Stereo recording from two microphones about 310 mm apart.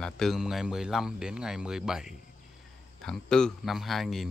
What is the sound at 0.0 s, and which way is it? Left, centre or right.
Speech, centre.